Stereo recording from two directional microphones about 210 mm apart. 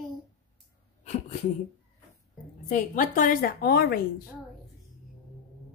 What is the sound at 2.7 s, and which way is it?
A woman's voice, 40° left (ahead or behind).